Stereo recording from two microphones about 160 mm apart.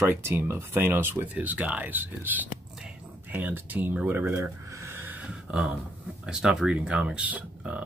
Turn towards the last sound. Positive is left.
turn(degrees=-10)  # may be behind; listen again after turning